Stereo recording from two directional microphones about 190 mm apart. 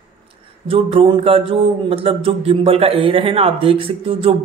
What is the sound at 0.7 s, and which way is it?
Speech, 30° right (ahead or behind).